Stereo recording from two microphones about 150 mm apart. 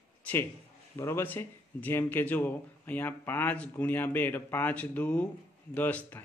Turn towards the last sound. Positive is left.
turn(degrees=10)  # may be behind; listen again after turning